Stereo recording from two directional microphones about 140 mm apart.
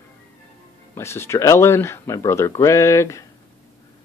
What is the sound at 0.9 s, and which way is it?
Speech, 20° left (ahead or behind).